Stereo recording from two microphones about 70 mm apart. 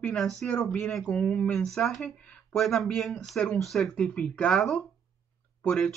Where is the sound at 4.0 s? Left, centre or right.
Centre.